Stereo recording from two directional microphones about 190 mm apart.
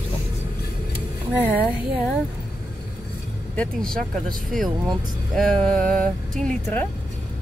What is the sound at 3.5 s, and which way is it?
Music, 5° left (ahead or behind).